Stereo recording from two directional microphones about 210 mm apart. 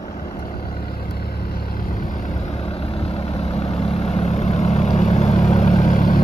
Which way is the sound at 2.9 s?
30° left (ahead or behind).